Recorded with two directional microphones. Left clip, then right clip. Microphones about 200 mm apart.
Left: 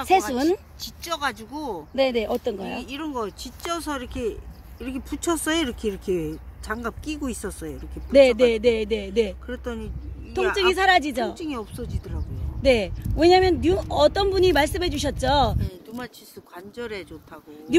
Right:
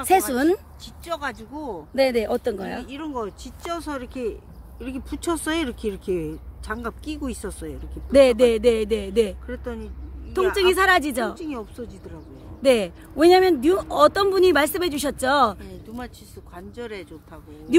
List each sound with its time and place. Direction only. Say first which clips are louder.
0.3 s speech: right 2 dB; centre (ahead or behind)
0.8 s speech: left 3 dB; 25° left (ahead or behind)
2.0 s speech: right 2 dB; centre (ahead or behind)
2.8 s speech: left 1 dB; 30° left (ahead or behind)
8.1 s speech: right 1 dB; centre (ahead or behind)
9.5 s speech: even; 25° left (ahead or behind)
10.6 s speech: right 1 dB; centre (ahead or behind)
11.3 s speech: left 1 dB; 25° left (ahead or behind)
12.6 s speech: right 1 dB; centre (ahead or behind)
16.5 s speech: left 1 dB; 35° left (ahead or behind)